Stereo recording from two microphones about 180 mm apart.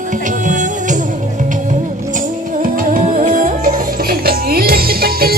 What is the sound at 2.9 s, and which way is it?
Music, 45° right (ahead or behind).